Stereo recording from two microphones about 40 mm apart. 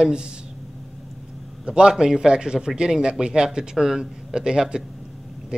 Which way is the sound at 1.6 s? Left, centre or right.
Right.